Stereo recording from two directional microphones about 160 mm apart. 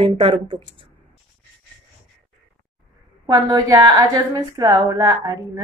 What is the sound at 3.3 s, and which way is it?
A woman's voice, 25° right (ahead or behind).